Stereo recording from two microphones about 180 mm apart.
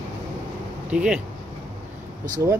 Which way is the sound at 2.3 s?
20° right (ahead or behind).